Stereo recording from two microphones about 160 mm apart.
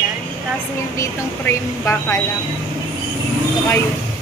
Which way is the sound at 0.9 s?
15° left (ahead or behind).